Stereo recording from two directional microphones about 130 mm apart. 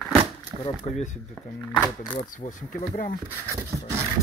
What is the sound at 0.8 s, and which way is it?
Speech, 65° left (ahead or behind).